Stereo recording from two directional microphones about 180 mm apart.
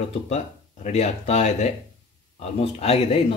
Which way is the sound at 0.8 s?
40° left (ahead or behind).